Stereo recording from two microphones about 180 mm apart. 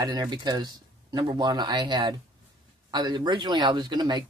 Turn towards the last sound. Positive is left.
turn(degrees=-25)  # may be behind; listen again after turning